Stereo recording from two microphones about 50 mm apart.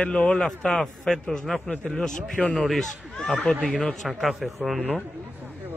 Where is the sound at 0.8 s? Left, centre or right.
Centre.